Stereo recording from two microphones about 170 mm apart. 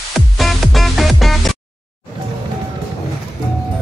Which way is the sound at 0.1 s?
Centre (ahead or behind).